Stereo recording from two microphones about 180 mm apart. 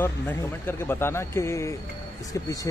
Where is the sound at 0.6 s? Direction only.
15° left (ahead or behind).